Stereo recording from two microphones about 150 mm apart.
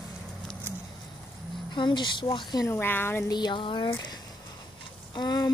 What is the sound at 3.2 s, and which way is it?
Speech, 30° left (ahead or behind).